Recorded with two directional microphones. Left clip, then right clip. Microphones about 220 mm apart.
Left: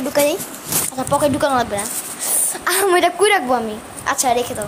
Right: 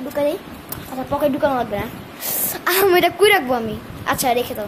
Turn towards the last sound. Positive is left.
turn(degrees=-5)  # may be behind; listen again after turning